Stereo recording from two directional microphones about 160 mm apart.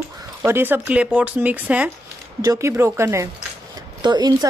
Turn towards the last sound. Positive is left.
turn(degrees=-25)  # may be behind; listen again after turning